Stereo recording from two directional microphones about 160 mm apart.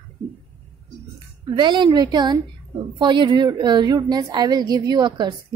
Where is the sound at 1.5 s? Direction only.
30° right (ahead or behind).